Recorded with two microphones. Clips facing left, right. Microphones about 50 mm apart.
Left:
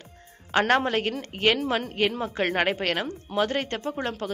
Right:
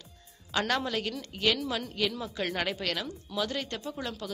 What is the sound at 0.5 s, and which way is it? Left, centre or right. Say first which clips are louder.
A woman's voice: left 8 dB; left.